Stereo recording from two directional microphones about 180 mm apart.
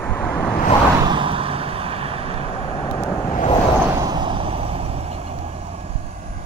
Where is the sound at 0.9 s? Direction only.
25° right (ahead or behind).